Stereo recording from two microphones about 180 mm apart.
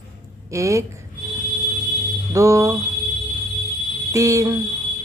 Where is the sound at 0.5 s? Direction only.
15° right (ahead or behind).